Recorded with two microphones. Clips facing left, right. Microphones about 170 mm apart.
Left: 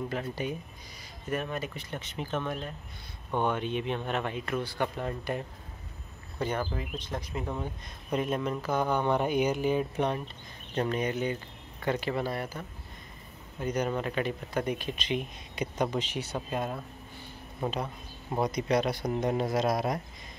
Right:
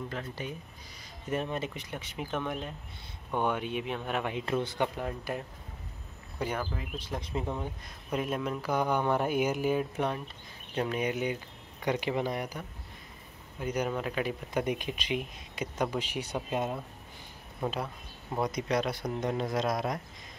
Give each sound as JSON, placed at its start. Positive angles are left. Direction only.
{"t": 0.1, "sound": "speech", "side_deg": 15}
{"t": 1.3, "sound": "speech", "side_deg": -25}
{"t": 1.7, "sound": "speech", "side_deg": -10}
{"t": 5.0, "sound": "speech", "side_deg": -5}
{"t": 6.6, "sound": "speech", "side_deg": 0}
{"t": 14.5, "sound": "speech", "side_deg": -15}
{"t": 18.4, "sound": "speech", "side_deg": 0}